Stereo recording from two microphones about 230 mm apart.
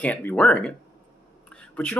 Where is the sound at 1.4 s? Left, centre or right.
Centre.